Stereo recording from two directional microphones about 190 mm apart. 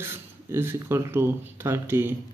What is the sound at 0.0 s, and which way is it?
Speech, 10° right (ahead or behind).